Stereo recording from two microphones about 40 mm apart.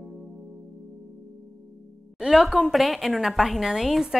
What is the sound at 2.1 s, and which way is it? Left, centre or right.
Speech, centre.